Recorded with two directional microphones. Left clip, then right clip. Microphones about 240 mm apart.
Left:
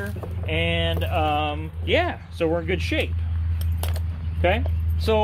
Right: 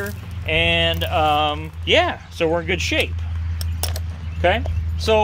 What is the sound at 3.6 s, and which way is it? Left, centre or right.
Keys jangling, centre.